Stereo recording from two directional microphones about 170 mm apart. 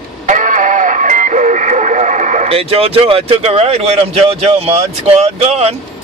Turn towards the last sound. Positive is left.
turn(degrees=-35)  # may be behind; listen again after turning